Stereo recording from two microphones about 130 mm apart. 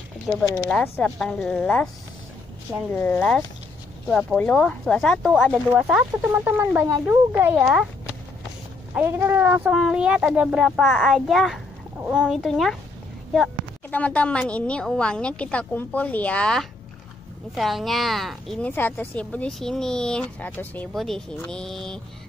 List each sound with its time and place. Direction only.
0.3 s a child's voice: 5° left (ahead or behind)
1.1 s a child's voice: 5° left (ahead or behind)
2.9 s a woman's voice: 15° left (ahead or behind)
5.8 s a child's voice: 5° right (ahead or behind)
6.3 s speech: 15° right (ahead or behind)
7.5 s a child's voice: 5° right (ahead or behind)
8.9 s speech: 20° right (ahead or behind)
9.7 s a child's voice: 5° right (ahead or behind)
13.8 s a woman's voice: 10° left (ahead or behind)
18.7 s a woman's voice: 15° left (ahead or behind)